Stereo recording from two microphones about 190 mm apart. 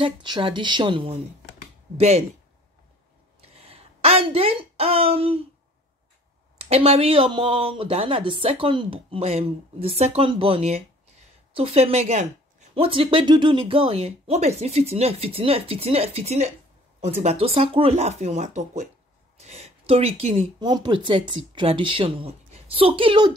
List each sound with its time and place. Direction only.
0.0 s a woman's voice: 25° right (ahead or behind)
3.3 s a sound: 30° right (ahead or behind)
6.7 s a woman's voice: 30° right (ahead or behind)